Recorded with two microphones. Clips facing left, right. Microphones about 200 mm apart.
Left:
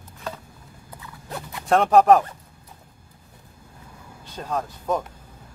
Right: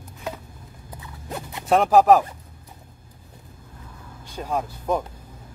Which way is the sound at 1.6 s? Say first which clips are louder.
Even; 5° right (ahead or behind).